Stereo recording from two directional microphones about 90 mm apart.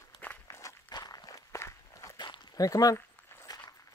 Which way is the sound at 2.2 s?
55° left (ahead or behind).